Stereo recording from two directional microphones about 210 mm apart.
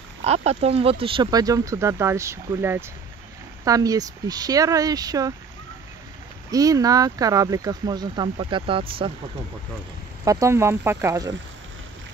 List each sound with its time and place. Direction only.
0.2 s speech: 30° right (ahead or behind)
6.5 s speech: 15° right (ahead or behind)
10.2 s speech: 15° right (ahead or behind)